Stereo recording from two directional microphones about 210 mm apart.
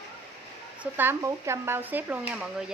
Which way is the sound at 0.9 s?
10° right (ahead or behind).